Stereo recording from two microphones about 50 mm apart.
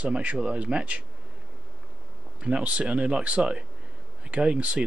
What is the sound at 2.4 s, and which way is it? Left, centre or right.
Speech, right.